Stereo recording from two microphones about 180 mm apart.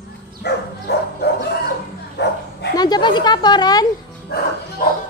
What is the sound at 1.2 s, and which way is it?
Bow-wow, 70° left (ahead or behind).